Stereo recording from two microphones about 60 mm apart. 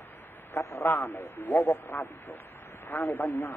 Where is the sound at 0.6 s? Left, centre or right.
Left.